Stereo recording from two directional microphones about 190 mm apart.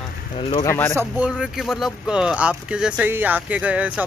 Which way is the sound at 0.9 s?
15° right (ahead or behind).